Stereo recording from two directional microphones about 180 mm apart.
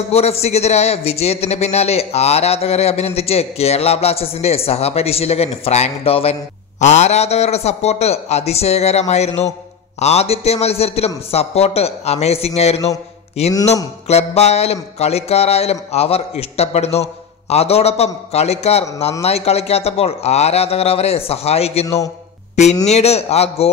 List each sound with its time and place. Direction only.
0.1 s a man's voice: 35° left (ahead or behind)
22.8 s a man's voice: 35° left (ahead or behind)